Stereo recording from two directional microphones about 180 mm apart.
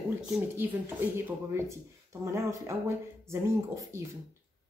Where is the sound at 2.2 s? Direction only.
15° right (ahead or behind).